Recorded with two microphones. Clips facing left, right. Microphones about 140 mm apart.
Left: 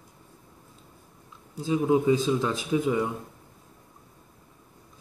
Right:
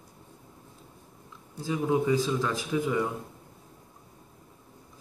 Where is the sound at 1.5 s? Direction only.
20° left (ahead or behind).